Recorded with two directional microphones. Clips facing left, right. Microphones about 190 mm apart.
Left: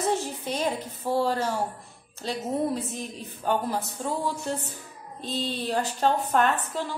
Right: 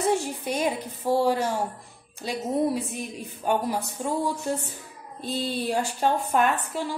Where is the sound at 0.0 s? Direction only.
15° right (ahead or behind).